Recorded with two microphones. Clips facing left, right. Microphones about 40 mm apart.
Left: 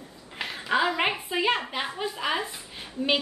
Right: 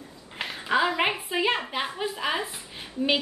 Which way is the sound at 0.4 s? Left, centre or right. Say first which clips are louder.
Right 1 dB; centre.